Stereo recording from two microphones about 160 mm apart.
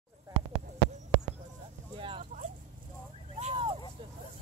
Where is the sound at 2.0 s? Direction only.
35° right (ahead or behind).